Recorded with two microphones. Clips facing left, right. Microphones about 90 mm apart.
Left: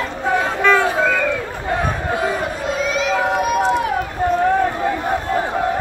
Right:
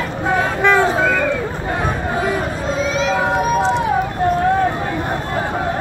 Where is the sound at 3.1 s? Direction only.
30° right (ahead or behind).